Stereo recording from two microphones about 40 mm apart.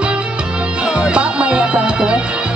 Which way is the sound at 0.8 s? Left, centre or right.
Right.